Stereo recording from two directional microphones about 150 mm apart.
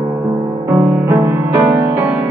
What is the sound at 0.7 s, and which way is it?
Music, 15° right (ahead or behind).